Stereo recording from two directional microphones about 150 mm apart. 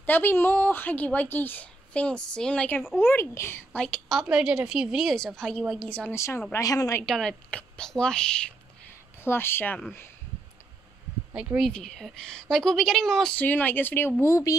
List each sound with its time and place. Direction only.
0.0 s a woman's voice: 15° left (ahead or behind)
3.0 s a woman's voice: 15° left (ahead or behind)
3.8 s speech: 5° left (ahead or behind)
6.1 s speech: 20° left (ahead or behind)
7.1 s a woman's voice: 5° left (ahead or behind)
11.3 s speech: 5° right (ahead or behind)
11.7 s speech: 5° left (ahead or behind); by 14.6 s 20° left (ahead or behind)